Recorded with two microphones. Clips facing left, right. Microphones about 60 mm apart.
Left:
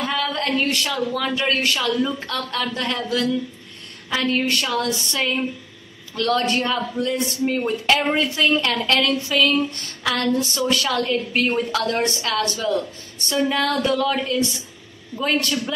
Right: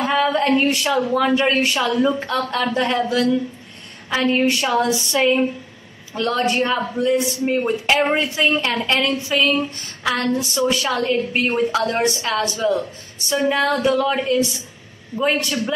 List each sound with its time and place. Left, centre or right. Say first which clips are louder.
0.0 s a woman's voice: right 6 dB; right